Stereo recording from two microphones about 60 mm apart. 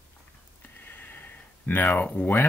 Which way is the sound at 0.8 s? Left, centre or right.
Left.